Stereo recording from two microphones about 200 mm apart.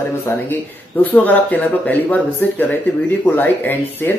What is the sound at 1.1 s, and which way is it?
Speech, 10° left (ahead or behind).